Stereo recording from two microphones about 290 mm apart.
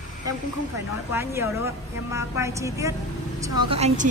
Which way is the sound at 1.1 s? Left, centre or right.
Centre.